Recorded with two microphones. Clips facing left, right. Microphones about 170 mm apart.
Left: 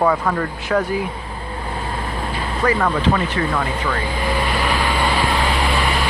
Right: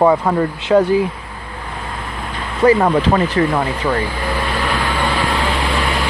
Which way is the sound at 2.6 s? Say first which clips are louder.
Right 6 dB; 30° right (ahead or behind).